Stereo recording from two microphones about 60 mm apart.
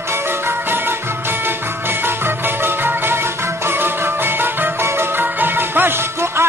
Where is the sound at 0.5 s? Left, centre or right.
Right.